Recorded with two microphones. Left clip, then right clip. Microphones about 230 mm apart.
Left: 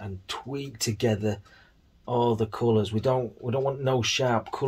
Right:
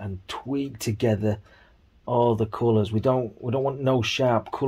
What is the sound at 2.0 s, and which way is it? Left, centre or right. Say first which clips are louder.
Speech: right 3 dB; right.